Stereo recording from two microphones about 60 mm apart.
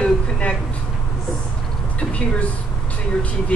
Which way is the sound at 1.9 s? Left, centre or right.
Centre.